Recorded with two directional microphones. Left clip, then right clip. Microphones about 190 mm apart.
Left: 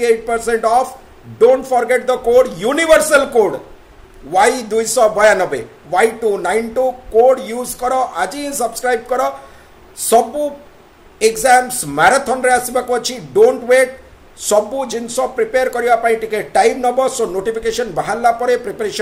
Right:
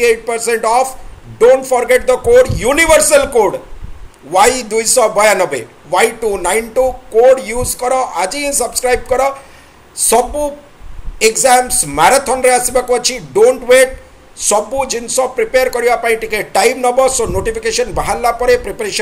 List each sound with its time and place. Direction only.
0.0 s a man's voice: 15° left (ahead or behind)